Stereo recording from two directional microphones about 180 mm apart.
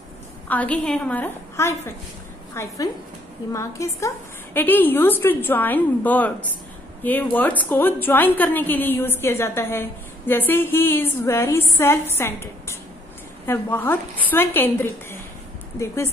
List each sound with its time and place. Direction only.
0.5 s a woman's voice: 10° left (ahead or behind)